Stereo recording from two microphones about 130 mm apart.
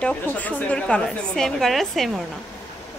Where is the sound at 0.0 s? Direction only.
10° left (ahead or behind).